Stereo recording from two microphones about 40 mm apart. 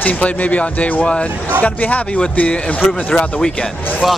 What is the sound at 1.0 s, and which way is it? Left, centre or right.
Speech, left.